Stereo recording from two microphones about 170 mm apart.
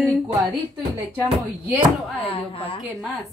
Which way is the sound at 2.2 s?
35° left (ahead or behind).